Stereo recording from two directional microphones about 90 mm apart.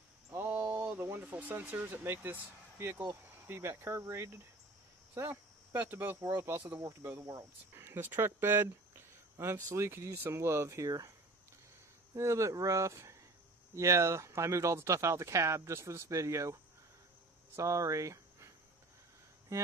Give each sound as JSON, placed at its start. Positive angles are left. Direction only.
{"t": 0.3, "sound": "a sound", "side_deg": -20}
{"t": 1.2, "sound": "speech", "side_deg": -15}
{"t": 12.2, "sound": "speech", "side_deg": -35}
{"t": 17.6, "sound": "speech", "side_deg": -35}
{"t": 19.5, "sound": "speech", "side_deg": -30}